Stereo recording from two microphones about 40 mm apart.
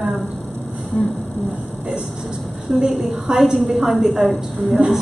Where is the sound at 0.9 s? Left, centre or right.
Centre.